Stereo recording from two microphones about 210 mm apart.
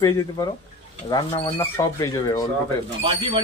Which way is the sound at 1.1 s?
25° left (ahead or behind).